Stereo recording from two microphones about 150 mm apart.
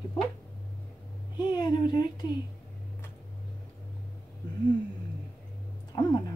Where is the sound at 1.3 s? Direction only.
30° left (ahead or behind).